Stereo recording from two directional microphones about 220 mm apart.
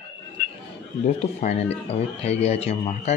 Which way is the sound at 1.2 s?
30° left (ahead or behind).